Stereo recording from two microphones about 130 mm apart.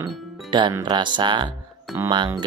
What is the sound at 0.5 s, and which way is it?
Speech, 35° right (ahead or behind).